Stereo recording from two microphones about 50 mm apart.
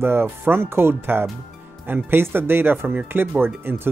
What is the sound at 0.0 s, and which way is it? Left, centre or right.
Speech, right.